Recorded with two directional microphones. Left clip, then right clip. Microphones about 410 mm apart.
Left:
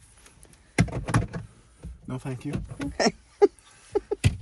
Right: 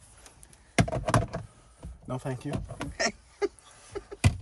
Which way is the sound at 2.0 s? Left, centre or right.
Centre.